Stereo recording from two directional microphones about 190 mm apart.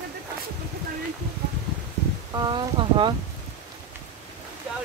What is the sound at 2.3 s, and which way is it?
Speech, 20° right (ahead or behind).